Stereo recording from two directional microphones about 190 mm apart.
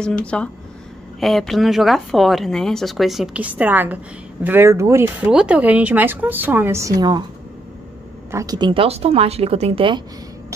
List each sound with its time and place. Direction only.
0.2 s speech: 5° left (ahead or behind); by 7.2 s 20° right (ahead or behind)
8.3 s speech: 15° right (ahead or behind)